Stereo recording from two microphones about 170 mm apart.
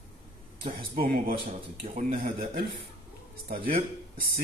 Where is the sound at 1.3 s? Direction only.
35° right (ahead or behind).